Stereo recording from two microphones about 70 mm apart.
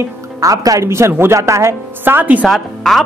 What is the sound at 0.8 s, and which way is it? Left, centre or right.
A woman's voice, right.